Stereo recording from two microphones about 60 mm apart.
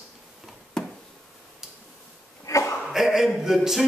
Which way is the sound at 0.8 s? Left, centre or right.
Centre.